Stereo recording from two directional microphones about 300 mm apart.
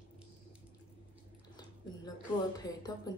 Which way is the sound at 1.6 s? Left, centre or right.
Centre.